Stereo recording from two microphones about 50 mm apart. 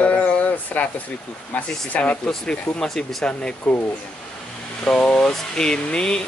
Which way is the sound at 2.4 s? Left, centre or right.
Centre.